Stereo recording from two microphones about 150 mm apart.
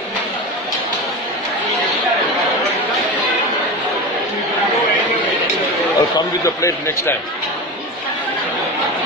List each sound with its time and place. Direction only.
5.9 s a man's voice: 20° left (ahead or behind)